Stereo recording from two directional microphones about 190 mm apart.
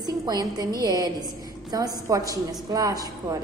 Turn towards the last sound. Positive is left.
turn(degrees=-20)  # may be behind; listen again after turning